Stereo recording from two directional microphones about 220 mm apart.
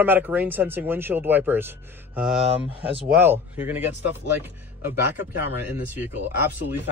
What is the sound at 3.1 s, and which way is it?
Speech, 10° right (ahead or behind).